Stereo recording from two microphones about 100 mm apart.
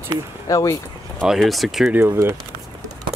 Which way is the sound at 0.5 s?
35° left (ahead or behind).